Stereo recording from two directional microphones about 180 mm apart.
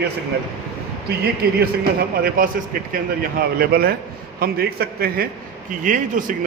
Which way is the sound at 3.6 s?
60° right (ahead or behind).